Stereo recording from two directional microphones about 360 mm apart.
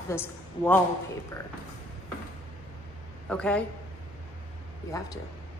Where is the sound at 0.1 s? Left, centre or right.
Centre.